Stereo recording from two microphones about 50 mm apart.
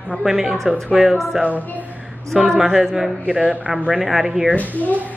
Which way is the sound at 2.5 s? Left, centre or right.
Centre.